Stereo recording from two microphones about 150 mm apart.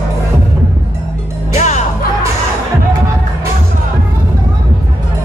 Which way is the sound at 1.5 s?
55° left (ahead or behind).